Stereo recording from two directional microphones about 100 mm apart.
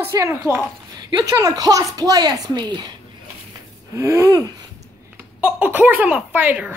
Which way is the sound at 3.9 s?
30° right (ahead or behind).